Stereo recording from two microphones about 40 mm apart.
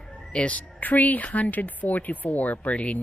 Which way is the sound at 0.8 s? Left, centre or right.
Left.